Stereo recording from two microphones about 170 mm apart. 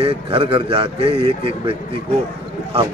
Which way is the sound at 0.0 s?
30° right (ahead or behind).